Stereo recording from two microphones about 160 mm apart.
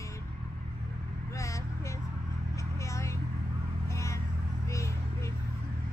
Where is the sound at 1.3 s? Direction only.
20° left (ahead or behind).